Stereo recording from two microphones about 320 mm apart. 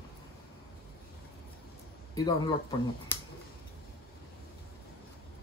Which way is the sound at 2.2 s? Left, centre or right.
Centre.